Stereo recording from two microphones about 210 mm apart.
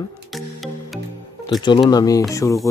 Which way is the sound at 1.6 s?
20° left (ahead or behind).